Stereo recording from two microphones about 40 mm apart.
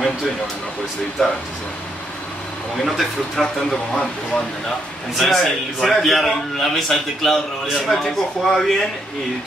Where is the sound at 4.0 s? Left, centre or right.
Left.